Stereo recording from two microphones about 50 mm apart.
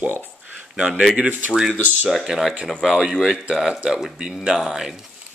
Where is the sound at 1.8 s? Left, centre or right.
Right.